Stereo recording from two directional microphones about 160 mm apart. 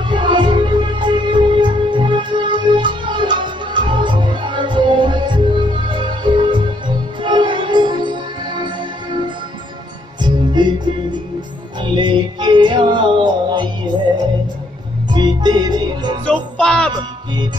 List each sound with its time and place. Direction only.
0.1 s music: 30° right (ahead or behind)
10.2 s music: 30° right (ahead or behind)
11.8 s music: 30° right (ahead or behind)
15.0 s music: 25° right (ahead or behind)
16.3 s music: 5° left (ahead or behind)